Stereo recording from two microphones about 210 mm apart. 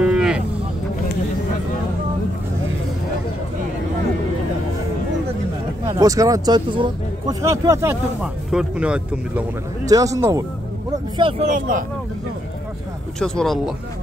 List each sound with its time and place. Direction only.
0.0 s livestock: 5° right (ahead or behind)
5.9 s speech: 15° right (ahead or behind)
9.8 s speech: 15° right (ahead or behind)
11.4 s speech: 40° right (ahead or behind)
13.2 s speech: centre (ahead or behind)